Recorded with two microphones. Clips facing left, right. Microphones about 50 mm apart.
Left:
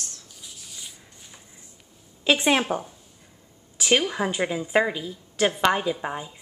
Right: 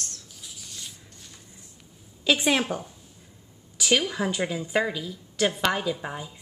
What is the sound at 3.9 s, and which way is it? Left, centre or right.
A woman's voice, centre.